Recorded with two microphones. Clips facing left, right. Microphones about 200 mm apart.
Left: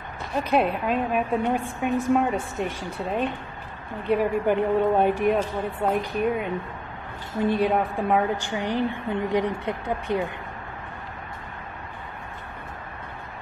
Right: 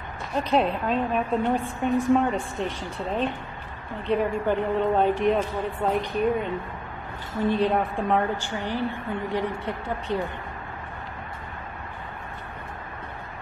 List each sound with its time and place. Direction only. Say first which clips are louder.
0.4 s a woman's voice: even; 5° left (ahead or behind)